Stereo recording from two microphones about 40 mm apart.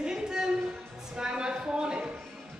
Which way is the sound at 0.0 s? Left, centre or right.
Centre.